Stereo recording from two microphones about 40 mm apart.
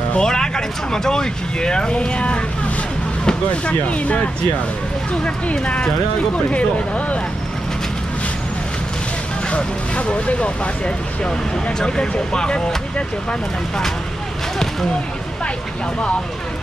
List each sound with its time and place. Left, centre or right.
0.1 s speech: centre
5.2 s speech: left
9.5 s speech: left